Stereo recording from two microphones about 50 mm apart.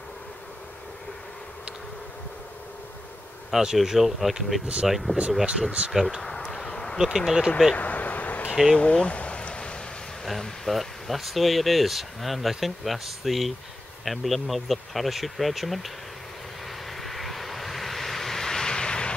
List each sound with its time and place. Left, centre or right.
3.5 s speech: centre
6.5 s a sound: centre
7.0 s speech: centre
7.7 s vehicle: left
8.7 s a sound: left
10.2 s speech: centre
16.9 s vehicle: centre